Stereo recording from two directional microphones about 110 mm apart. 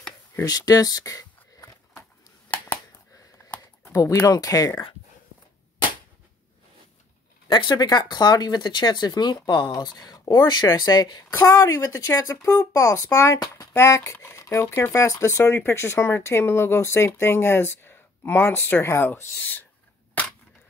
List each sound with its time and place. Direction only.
0.4 s speech: 35° left (ahead or behind)
3.8 s speech: 25° left (ahead or behind)
7.4 s speech: 45° left (ahead or behind)
11.3 s speech: 30° left (ahead or behind)